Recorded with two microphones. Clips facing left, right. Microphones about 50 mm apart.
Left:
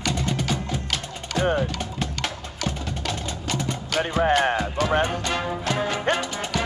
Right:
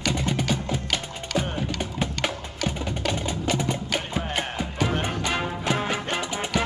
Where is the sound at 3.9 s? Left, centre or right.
Left.